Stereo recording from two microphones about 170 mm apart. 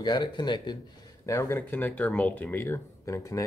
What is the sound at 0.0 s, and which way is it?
Speech, 25° left (ahead or behind).